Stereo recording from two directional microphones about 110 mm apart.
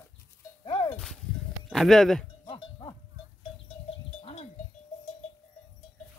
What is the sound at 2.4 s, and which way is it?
Cowbell, 50° left (ahead or behind).